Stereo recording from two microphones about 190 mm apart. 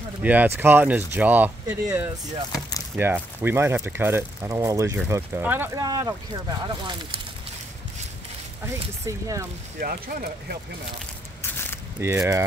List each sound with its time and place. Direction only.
0.2 s speech: 10° right (ahead or behind)
9.0 s speech: 15° right (ahead or behind)
9.8 s speech: 50° right (ahead or behind)
11.4 s a sound: 10° left (ahead or behind)
12.0 s speech: 15° right (ahead or behind)